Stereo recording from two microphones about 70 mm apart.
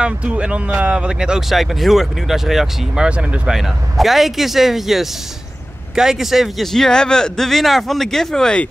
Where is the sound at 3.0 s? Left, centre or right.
Centre.